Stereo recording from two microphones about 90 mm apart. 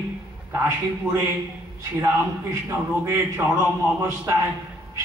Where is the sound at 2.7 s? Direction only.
20° right (ahead or behind).